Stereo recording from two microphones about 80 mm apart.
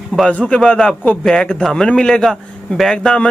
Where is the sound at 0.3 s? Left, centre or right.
Centre.